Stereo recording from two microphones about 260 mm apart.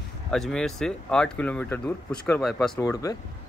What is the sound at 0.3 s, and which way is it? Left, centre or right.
Speech, centre.